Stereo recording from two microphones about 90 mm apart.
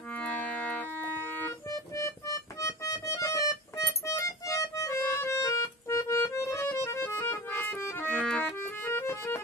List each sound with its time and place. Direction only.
0.1 s music: 15° left (ahead or behind)
1.7 s music: 35° left (ahead or behind); by 8.5 s 15° left (ahead or behind)
8.5 s music: 25° left (ahead or behind)